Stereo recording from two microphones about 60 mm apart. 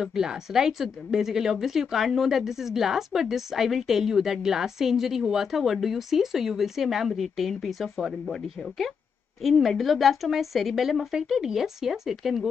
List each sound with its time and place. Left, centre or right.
0.0 s a woman's voice: centre